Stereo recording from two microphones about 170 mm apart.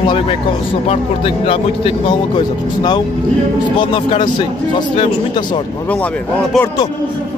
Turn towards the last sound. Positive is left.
turn(degrees=5)  # may be behind; listen again after turning